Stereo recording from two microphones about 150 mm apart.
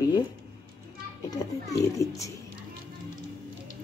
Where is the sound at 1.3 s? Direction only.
20° left (ahead or behind).